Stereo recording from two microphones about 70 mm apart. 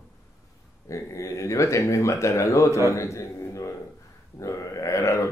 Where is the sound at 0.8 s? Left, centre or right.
Left.